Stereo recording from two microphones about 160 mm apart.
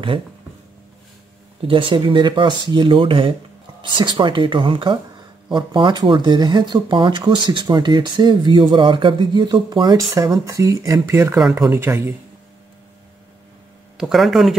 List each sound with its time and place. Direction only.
1.7 s speech: 30° right (ahead or behind); by 12.1 s 15° right (ahead or behind)
13.9 s speech: centre (ahead or behind)